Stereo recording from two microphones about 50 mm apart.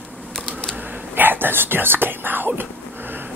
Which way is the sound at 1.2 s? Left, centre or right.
Right.